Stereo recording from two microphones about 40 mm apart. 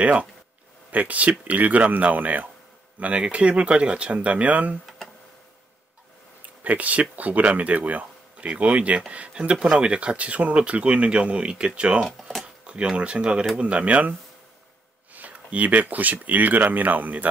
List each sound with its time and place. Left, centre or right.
0.0 s speech: right
3.0 s speech: right
4.8 s a sound: centre
6.6 s speech: right
15.1 s speech: right